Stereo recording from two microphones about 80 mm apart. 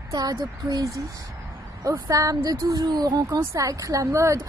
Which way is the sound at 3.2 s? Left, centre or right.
Right.